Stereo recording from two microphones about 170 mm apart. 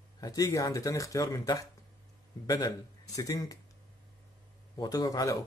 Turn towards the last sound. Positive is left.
turn(degrees=20)  # may be behind; listen again after turning